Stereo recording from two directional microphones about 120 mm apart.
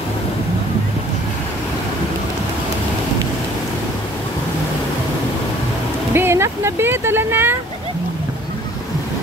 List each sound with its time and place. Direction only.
6.1 s music: 20° right (ahead or behind)